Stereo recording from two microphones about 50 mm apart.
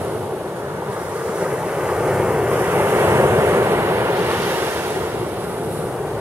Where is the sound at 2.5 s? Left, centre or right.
Right.